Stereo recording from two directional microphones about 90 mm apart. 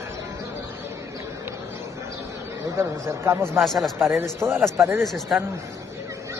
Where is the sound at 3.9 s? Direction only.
30° right (ahead or behind).